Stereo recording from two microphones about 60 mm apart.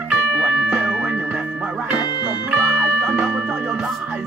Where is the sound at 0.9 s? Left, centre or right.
Centre.